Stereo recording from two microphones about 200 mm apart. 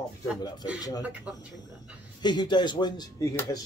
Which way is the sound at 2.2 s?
20° left (ahead or behind).